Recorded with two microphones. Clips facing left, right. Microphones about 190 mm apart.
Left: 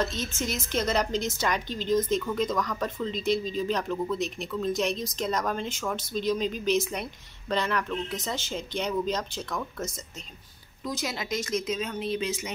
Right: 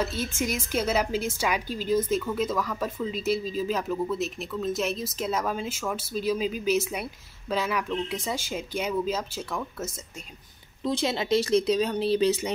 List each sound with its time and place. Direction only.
0.0 s a woman's voice: 10° right (ahead or behind)
10.8 s speech: 30° right (ahead or behind)